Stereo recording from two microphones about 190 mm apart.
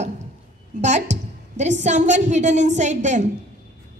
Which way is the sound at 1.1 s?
40° right (ahead or behind).